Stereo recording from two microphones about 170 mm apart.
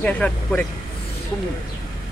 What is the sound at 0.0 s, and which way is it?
Speech, 10° left (ahead or behind).